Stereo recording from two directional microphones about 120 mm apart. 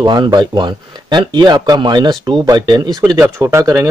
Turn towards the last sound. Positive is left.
turn(degrees=-25)  # may be behind; listen again after turning